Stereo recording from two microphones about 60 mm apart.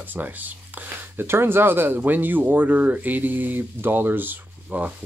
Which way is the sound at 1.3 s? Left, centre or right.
Right.